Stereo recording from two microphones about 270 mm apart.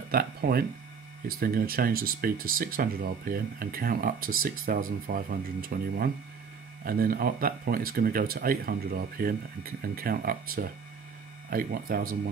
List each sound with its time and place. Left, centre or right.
0.1 s speech: right